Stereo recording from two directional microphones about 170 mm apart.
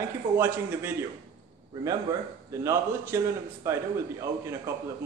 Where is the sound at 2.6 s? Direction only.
15° right (ahead or behind).